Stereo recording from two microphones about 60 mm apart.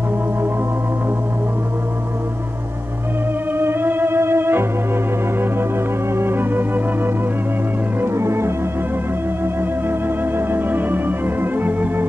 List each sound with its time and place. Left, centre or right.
3.5 s music: right
6.1 s music: right
8.0 s music: right